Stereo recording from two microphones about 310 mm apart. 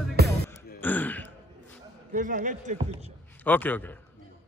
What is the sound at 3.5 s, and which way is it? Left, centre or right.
Speech, centre.